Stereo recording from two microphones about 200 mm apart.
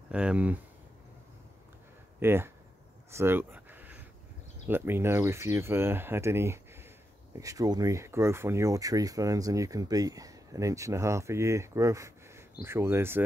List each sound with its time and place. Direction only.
0.1 s speech: 5° right (ahead or behind)
2.1 s speech: 10° right (ahead or behind)
3.1 s a sound: 10° right (ahead or behind)
4.6 s speech: 10° right (ahead or behind)